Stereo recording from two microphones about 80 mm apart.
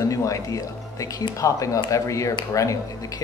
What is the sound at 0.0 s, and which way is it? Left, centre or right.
Speech, left.